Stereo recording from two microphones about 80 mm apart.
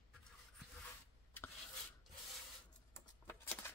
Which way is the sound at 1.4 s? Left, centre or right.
Left.